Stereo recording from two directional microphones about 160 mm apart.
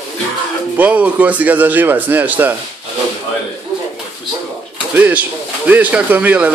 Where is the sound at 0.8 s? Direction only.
10° right (ahead or behind).